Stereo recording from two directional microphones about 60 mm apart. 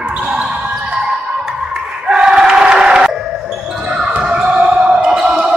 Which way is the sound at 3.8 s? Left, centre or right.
Centre.